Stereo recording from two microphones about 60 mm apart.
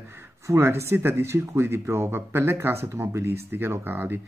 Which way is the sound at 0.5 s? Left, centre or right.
Right.